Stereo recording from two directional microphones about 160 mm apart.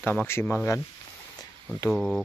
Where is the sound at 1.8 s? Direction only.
Centre (ahead or behind).